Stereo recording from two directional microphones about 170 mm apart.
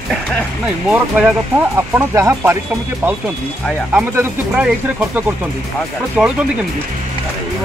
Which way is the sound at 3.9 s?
10° right (ahead or behind).